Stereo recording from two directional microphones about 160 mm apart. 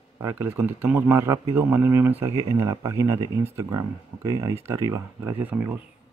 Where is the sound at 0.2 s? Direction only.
15° right (ahead or behind).